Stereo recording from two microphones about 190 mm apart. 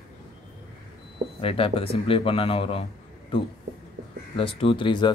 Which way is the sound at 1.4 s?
30° left (ahead or behind).